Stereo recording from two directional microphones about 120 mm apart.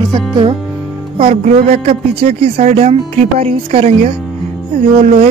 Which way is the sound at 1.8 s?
60° right (ahead or behind).